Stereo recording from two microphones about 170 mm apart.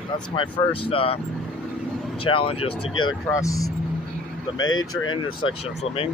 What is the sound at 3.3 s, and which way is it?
Speech, 20° left (ahead or behind).